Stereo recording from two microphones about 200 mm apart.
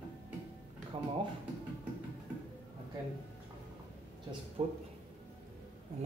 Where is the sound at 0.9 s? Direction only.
25° right (ahead or behind).